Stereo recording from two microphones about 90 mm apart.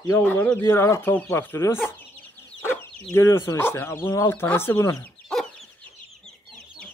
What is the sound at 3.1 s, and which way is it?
Speech, 30° left (ahead or behind).